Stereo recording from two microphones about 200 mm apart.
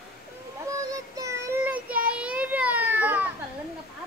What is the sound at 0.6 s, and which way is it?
Child singing, 15° right (ahead or behind).